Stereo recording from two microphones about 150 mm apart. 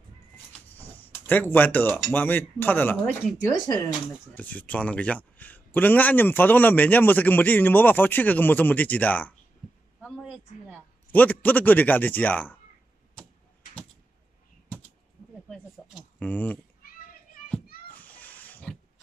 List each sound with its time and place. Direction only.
0.7 s a sound: 15° left (ahead or behind)
2.1 s a man's voice: 15° left (ahead or behind)
3.5 s speech: 25° left (ahead or behind)
4.4 s a man's voice: 10° left (ahead or behind)
10.7 s a man's voice: 10° left (ahead or behind)
16.2 s a man's voice: 10° left (ahead or behind)
17.9 s a sound: 10° left (ahead or behind)